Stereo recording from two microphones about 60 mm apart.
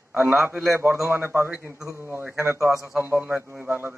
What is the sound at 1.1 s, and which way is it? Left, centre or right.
A man's voice, right.